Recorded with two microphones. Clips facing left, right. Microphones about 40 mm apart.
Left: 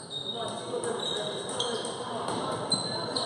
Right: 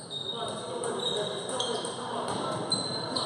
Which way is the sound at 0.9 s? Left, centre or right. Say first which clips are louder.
Right 4 dB; centre.